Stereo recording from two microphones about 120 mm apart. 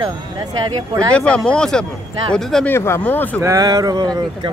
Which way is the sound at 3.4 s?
30° right (ahead or behind).